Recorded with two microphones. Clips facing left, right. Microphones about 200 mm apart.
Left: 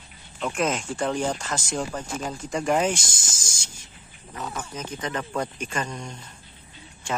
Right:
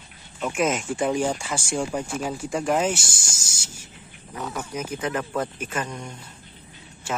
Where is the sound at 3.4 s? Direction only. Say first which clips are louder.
Right 1 dB; 10° right (ahead or behind).